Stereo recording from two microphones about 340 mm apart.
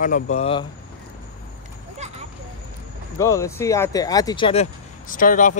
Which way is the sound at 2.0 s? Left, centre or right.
Centre.